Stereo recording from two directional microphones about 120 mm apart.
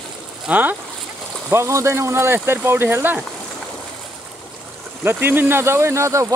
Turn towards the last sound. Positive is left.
turn(degrees=-25)  # may be behind; listen again after turning